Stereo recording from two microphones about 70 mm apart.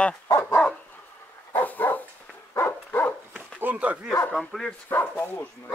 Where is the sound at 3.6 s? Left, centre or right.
Right.